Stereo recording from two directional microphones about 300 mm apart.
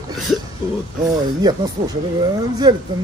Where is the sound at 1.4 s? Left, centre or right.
Centre.